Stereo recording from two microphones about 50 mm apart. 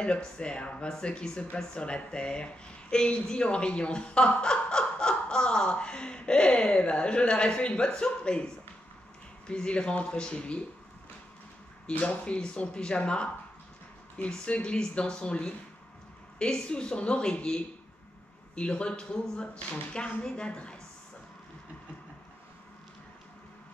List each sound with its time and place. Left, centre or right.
0.0 s speech: left
9.5 s speech: centre
12.0 s speech: left